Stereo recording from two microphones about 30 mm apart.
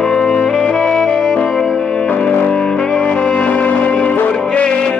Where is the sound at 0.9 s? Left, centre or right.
Centre.